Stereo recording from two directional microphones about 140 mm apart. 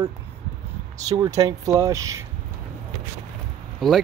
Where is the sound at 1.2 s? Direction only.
25° right (ahead or behind).